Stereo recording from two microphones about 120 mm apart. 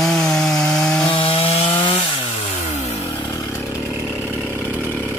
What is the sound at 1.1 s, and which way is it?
Wood, 50° left (ahead or behind).